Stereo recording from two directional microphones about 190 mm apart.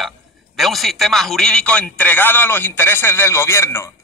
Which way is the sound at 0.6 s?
Centre (ahead or behind).